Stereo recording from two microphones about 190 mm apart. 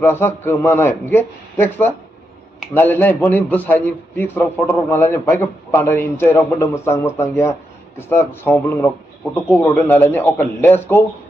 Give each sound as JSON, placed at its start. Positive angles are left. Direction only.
{"t": 0.0, "sound": "a man's voice", "side_deg": 10}